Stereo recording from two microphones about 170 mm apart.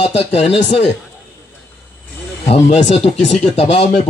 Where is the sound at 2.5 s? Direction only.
40° left (ahead or behind).